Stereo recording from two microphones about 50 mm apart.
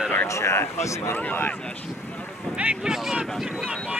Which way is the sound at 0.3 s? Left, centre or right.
Left.